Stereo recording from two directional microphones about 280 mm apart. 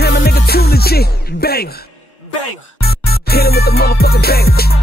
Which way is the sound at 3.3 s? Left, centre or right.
Left.